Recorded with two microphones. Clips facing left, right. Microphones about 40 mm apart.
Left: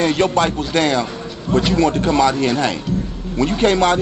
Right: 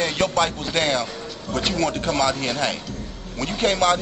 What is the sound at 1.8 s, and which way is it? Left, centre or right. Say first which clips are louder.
A man's voice: left 5 dB; left.